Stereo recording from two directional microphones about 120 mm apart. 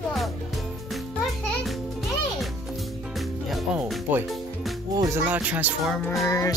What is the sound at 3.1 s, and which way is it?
Music, centre (ahead or behind).